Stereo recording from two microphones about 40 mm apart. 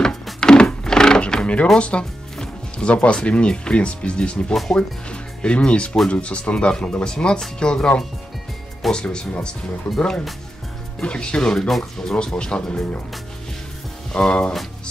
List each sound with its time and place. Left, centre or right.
0.0 s music: centre
1.8 s speech: left
2.3 s music: centre
2.9 s speech: left
8.9 s speech: left
12.3 s speech: left
14.1 s speech: left